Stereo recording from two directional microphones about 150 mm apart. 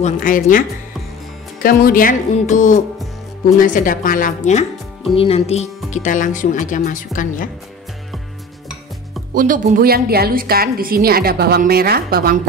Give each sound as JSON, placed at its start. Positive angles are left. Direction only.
{"t": 0.0, "sound": "speech", "side_deg": 60}
{"t": 1.6, "sound": "speech", "side_deg": 75}
{"t": 5.1, "sound": "speech", "side_deg": 40}
{"t": 9.3, "sound": "a woman's voice", "side_deg": -65}